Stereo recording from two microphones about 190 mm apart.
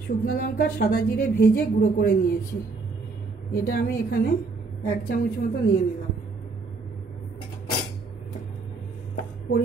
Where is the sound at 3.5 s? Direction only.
50° left (ahead or behind).